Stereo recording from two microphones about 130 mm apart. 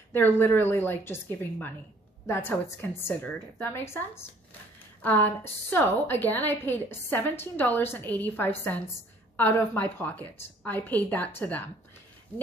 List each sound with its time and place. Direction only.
0.1 s a woman's voice: 15° left (ahead or behind)